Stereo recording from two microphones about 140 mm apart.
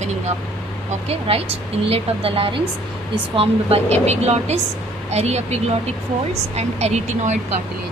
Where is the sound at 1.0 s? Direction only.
45° right (ahead or behind).